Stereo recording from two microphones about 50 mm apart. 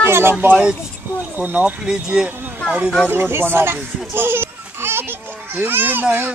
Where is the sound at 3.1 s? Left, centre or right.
Right.